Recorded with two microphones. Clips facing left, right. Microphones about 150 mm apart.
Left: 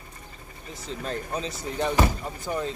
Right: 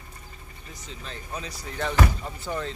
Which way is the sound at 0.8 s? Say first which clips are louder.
Left 9 dB; 45° left (ahead or behind).